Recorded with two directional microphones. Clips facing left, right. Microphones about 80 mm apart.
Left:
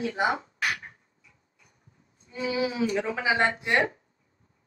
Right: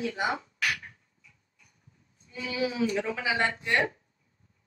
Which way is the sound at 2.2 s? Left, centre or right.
Left.